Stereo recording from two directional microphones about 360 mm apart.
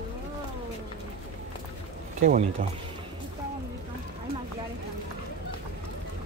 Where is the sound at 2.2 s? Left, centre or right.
Centre.